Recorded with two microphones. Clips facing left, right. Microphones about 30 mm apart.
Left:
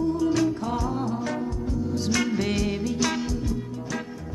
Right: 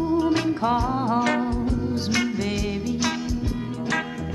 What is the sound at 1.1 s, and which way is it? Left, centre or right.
Music, right.